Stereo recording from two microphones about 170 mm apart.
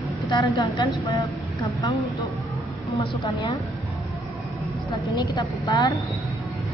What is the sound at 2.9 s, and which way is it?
Speech, 20° left (ahead or behind).